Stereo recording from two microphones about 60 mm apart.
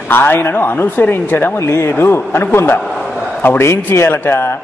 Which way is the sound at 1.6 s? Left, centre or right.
Left.